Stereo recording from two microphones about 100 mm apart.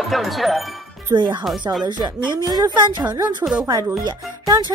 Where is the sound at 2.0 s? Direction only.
45° right (ahead or behind).